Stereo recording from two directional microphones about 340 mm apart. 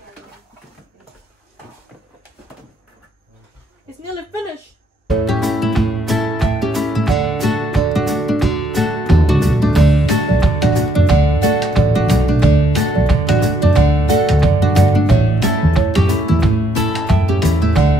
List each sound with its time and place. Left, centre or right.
5.0 s music: centre